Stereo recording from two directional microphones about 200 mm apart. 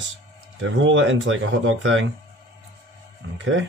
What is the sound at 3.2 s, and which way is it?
Music, 75° right (ahead or behind).